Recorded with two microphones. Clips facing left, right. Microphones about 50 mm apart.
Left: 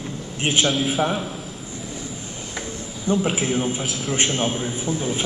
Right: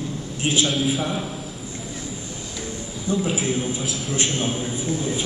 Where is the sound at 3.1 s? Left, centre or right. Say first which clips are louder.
Left 2 dB; left.